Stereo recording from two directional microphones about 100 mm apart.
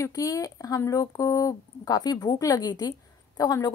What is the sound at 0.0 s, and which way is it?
Speech, 35° left (ahead or behind).